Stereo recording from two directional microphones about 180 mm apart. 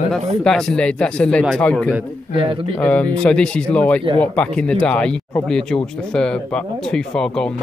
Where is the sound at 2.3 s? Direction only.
30° right (ahead or behind).